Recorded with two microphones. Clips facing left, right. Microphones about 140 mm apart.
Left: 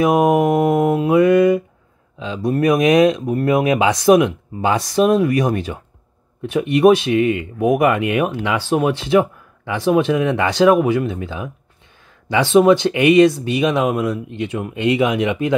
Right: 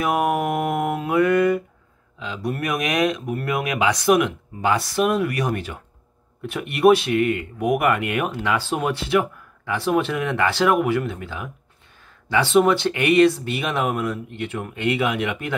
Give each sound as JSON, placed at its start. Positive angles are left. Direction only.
{"t": 0.0, "sound": "speech", "side_deg": 15}
{"t": 1.0, "sound": "mantra", "side_deg": 15}
{"t": 2.1, "sound": "speech", "side_deg": 25}